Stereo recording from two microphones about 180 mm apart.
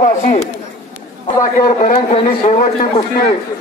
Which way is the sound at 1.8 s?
35° left (ahead or behind).